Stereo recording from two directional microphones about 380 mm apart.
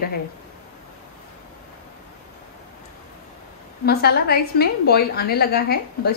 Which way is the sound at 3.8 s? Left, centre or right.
Left.